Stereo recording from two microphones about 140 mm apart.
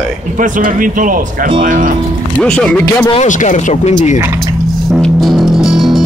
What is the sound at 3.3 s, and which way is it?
Speech, 60° left (ahead or behind).